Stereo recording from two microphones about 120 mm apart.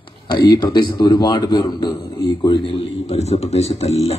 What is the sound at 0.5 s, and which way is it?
A man's voice, 30° left (ahead or behind).